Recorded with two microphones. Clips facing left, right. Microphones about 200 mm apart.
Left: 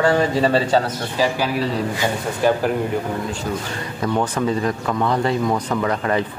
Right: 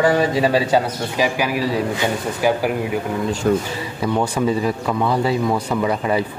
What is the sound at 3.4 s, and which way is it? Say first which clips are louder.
Speech: right 10 dB; 55° right (ahead or behind).